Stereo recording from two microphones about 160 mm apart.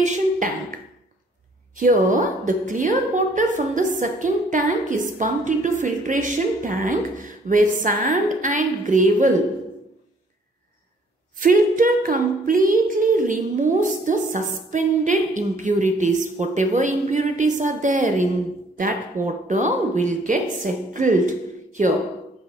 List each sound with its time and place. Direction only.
0.0 s a sound: 50° right (ahead or behind)
1.8 s a woman's voice: 55° right (ahead or behind)
11.3 s a woman's voice: 55° right (ahead or behind)